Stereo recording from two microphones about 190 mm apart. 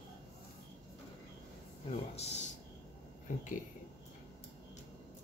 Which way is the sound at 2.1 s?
35° left (ahead or behind).